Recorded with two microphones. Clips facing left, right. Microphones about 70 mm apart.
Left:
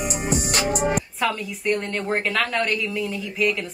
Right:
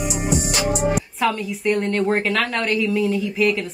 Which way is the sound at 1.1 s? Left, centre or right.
Centre.